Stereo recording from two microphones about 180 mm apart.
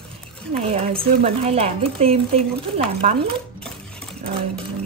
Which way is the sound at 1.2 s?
35° right (ahead or behind).